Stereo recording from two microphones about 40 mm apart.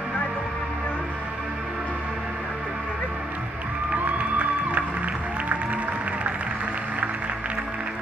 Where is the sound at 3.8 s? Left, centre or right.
Right.